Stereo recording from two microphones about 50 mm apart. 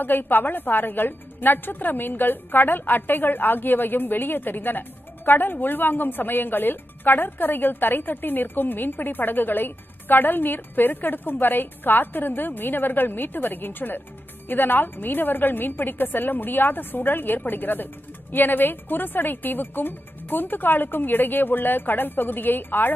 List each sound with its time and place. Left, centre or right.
0.0 s a woman's voice: left